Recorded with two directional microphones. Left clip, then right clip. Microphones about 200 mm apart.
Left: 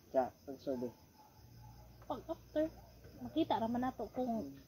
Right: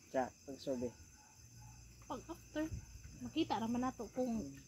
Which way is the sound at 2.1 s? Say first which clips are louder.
Left 6 dB; 10° right (ahead or behind).